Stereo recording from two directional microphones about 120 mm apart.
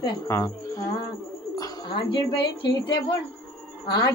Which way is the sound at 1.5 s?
40° left (ahead or behind).